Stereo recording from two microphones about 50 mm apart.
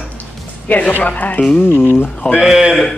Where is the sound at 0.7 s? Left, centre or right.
Left.